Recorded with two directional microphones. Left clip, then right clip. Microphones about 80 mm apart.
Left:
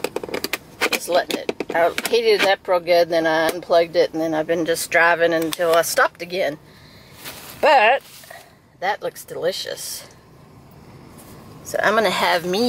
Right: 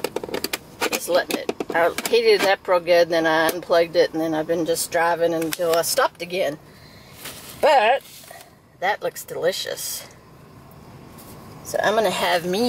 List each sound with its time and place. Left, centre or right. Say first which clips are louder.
0.5 s vehicle: left 6 dB; left
1.0 s speech: left 1 dB; centre
7.6 s speech: left 2 dB; centre
11.7 s speech: left 2 dB; centre